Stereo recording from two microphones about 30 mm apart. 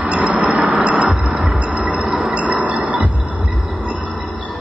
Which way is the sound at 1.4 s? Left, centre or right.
Right.